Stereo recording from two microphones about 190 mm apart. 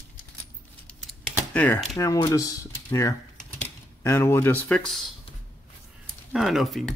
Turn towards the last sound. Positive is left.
turn(degrees=0)  # may be behind; listen again after turning